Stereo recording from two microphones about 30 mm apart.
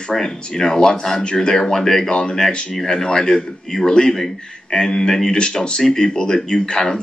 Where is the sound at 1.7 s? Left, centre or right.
Centre.